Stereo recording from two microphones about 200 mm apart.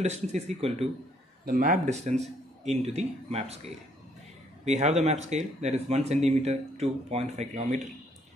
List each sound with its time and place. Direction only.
0.0 s speech: 35° right (ahead or behind)
1.4 s speech: 45° right (ahead or behind)